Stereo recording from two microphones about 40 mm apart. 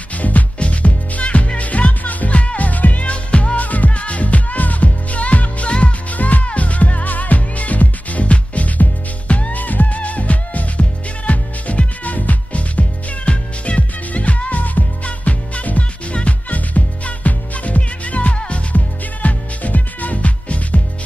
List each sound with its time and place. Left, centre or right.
0.1 s music: left